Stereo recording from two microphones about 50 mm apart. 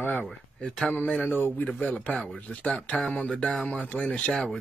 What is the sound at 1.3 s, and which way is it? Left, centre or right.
A man's voice, left.